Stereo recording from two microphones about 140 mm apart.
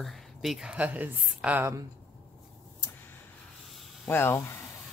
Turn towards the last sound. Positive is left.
turn(degrees=20)  # may be behind; listen again after turning